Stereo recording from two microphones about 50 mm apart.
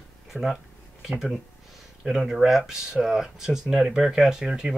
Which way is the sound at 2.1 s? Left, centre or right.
Centre.